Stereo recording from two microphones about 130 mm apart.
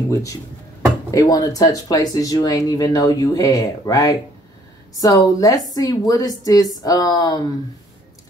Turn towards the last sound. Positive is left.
turn(degrees=30)  # may be behind; listen again after turning